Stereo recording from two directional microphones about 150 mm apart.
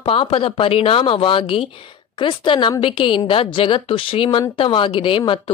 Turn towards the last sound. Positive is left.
turn(degrees=35)  # may be behind; listen again after turning